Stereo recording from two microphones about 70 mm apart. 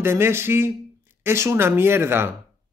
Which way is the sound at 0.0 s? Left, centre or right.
Right.